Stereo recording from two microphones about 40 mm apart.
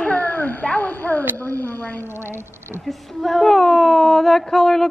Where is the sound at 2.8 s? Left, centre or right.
Centre.